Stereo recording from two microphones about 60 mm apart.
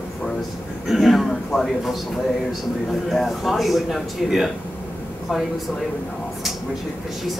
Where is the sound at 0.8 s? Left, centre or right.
Centre.